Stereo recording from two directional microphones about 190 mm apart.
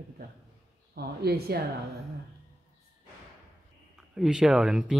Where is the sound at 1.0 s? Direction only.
55° right (ahead or behind).